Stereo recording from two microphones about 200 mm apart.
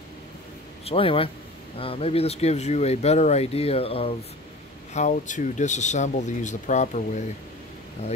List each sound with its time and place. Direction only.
0.8 s a man's voice: 25° left (ahead or behind)